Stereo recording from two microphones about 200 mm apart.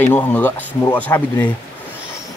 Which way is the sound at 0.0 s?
10° left (ahead or behind).